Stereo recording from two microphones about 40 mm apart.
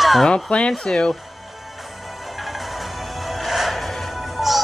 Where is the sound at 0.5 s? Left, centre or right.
Left.